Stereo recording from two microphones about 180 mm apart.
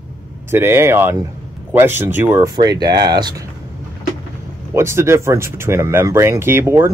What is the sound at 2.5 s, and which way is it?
Speech, 20° right (ahead or behind).